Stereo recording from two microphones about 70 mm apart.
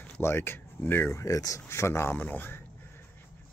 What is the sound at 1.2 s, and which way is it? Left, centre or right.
Speech, left.